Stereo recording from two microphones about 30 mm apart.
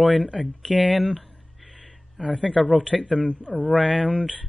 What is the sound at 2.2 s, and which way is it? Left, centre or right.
Speech, right.